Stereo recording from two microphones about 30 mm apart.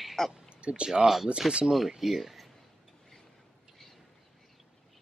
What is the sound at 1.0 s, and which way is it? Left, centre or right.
Speech, centre.